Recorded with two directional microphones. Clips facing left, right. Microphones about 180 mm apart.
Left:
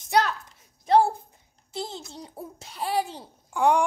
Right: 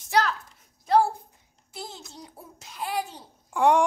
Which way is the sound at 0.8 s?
25° left (ahead or behind).